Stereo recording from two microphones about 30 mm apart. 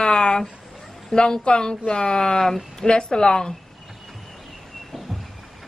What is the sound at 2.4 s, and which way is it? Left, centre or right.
Speech, centre.